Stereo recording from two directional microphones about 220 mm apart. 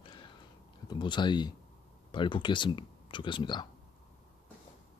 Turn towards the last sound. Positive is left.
turn(degrees=20)  # may be behind; listen again after turning